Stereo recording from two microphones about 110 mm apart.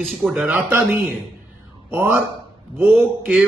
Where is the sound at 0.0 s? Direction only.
5° left (ahead or behind).